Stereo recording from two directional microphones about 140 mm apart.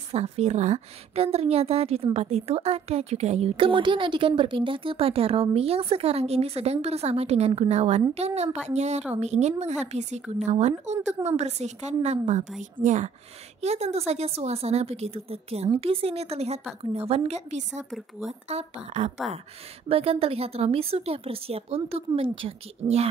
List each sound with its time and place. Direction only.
0.1 s a woman's voice: 50° right (ahead or behind)